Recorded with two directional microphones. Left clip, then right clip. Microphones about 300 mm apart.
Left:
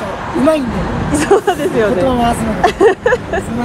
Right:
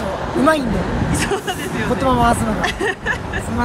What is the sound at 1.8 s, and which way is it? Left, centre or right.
Speech, centre.